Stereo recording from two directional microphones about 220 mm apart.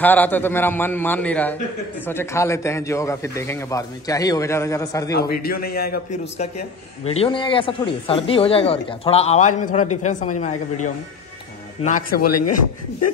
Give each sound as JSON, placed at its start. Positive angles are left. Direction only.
{"t": 0.0, "sound": "a man's voice", "side_deg": 10}
{"t": 5.3, "sound": "a man's voice", "side_deg": 45}
{"t": 7.1, "sound": "a woman's voice", "side_deg": 25}
{"t": 12.2, "sound": "speech", "side_deg": 90}